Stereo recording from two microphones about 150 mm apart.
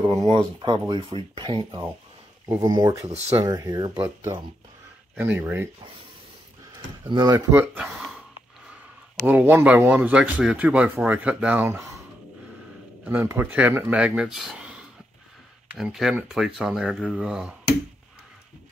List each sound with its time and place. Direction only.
0.0 s speech: 20° right (ahead or behind)
7.1 s speech: 30° right (ahead or behind)
7.5 s speech: 10° right (ahead or behind)
9.2 s speech: 10° right (ahead or behind)
13.0 s speech: 15° right (ahead or behind)